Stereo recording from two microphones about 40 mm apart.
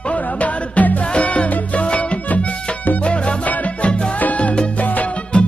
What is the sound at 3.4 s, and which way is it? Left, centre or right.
Music, left.